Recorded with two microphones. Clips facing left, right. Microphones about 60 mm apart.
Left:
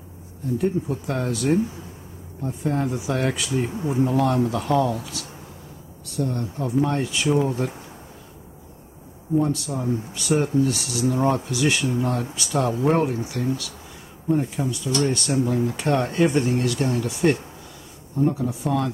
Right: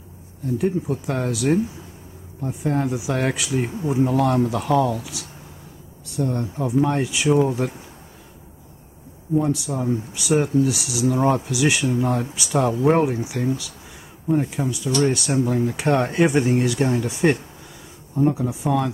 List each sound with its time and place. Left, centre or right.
0.6 s speech: centre
6.1 s speech: centre
9.4 s speech: centre